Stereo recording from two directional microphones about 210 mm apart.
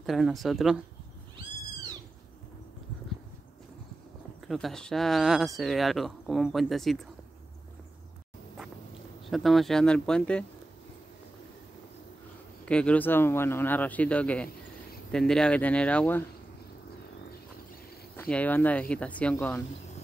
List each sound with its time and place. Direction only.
0.0 s speech: centre (ahead or behind)
4.5 s speech: centre (ahead or behind)
9.2 s speech: centre (ahead or behind)
12.6 s speech: 5° left (ahead or behind)
18.3 s speech: 10° left (ahead or behind)